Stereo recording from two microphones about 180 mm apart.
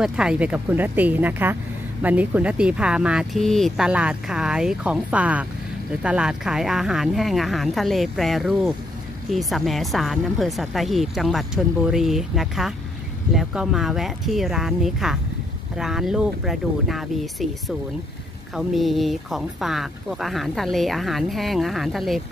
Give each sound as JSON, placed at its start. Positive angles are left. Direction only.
{"t": 0.0, "sound": "speech", "side_deg": -5}